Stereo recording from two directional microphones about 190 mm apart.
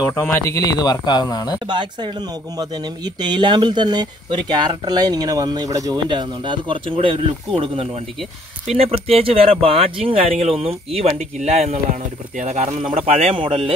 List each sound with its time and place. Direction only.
0.1 s speech: 15° left (ahead or behind)
1.7 s speech: 25° right (ahead or behind)